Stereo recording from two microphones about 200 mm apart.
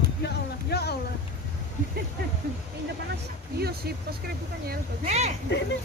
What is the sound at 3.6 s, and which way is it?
Speech, 50° right (ahead or behind).